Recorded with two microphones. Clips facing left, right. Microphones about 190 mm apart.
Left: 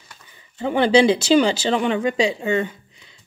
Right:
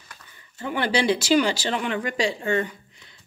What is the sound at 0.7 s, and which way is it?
Speech, 25° left (ahead or behind).